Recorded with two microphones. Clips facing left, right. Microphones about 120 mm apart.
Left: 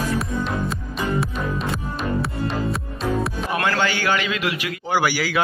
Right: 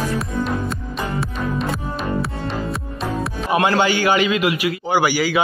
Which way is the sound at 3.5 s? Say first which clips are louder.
Right 6 dB; 20° right (ahead or behind).